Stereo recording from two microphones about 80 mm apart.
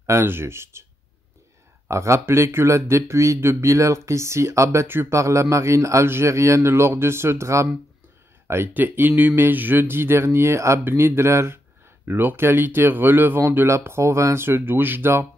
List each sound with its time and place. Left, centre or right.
0.0 s speech: right
1.9 s speech: right